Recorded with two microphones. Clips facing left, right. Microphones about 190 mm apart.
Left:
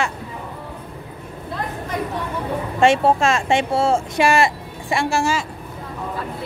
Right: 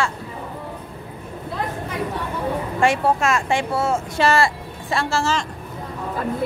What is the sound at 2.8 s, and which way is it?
A woman's voice, 25° left (ahead or behind).